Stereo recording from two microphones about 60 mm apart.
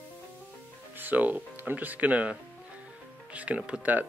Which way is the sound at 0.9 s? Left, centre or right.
Right.